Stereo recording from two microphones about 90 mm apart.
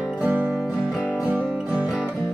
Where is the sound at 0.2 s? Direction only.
20° right (ahead or behind).